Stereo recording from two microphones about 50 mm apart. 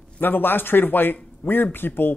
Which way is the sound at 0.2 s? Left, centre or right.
Left.